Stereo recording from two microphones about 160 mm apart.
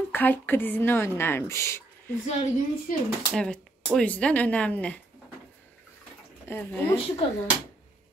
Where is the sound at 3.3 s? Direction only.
5° left (ahead or behind).